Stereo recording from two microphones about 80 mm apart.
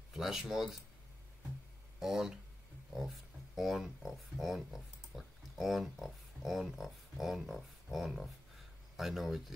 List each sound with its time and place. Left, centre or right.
0.1 s speech: centre
2.0 s speech: centre
3.5 s speech: centre